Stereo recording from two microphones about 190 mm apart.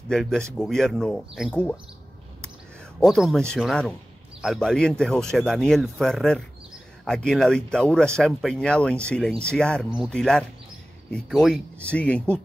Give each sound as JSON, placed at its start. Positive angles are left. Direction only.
{"t": 0.1, "sound": "speech", "side_deg": 0}
{"t": 3.0, "sound": "speech", "side_deg": 0}